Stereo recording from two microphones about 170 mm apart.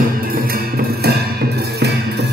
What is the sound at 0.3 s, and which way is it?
Music, 60° right (ahead or behind).